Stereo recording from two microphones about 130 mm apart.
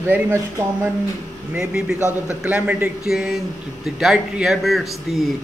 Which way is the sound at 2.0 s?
20° left (ahead or behind).